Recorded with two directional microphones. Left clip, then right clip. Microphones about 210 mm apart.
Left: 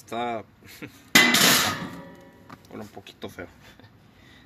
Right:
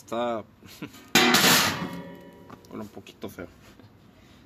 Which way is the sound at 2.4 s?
Centre (ahead or behind).